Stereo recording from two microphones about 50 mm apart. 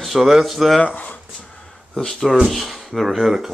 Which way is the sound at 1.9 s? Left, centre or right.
Centre.